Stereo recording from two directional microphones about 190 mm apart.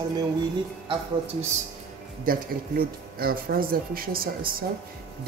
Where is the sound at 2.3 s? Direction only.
50° right (ahead or behind).